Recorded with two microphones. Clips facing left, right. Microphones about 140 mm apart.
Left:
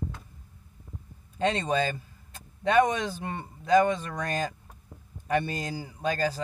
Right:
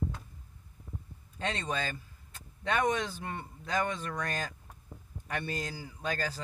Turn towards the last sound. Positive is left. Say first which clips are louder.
# left 7 dB
turn(degrees=20)  # may be behind; listen again after turning